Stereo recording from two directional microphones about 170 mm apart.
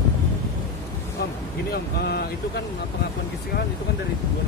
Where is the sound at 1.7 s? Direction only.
70° left (ahead or behind).